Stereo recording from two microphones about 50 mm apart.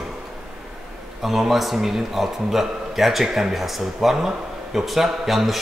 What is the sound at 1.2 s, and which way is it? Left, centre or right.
A man's voice, centre.